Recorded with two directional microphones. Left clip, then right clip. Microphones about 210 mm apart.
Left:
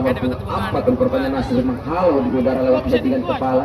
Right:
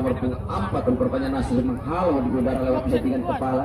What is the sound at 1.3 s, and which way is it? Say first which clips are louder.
Speech: left 5 dB; 50° right (ahead or behind).